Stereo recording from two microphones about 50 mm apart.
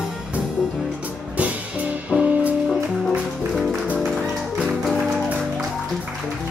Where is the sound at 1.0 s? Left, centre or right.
Right.